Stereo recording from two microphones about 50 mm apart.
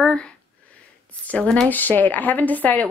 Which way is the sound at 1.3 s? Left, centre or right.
Left.